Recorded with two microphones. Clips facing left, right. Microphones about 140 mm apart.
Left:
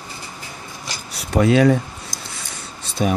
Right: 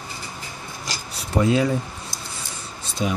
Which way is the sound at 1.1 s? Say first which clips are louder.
Left 4 dB; 75° left (ahead or behind).